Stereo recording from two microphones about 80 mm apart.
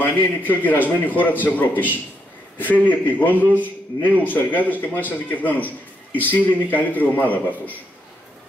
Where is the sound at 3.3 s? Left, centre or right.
Right.